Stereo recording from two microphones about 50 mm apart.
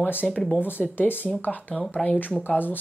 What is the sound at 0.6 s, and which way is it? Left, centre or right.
Speech, left.